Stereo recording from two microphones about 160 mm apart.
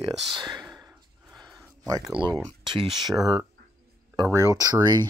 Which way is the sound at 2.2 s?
35° right (ahead or behind).